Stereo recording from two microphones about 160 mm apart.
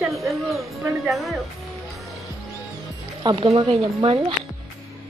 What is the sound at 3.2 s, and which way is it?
Speech, 35° right (ahead or behind).